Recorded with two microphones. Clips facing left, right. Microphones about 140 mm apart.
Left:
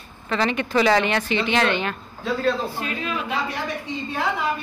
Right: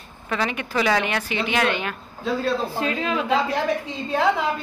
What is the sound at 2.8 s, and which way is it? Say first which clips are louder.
Speech: right 4 dB; 90° right.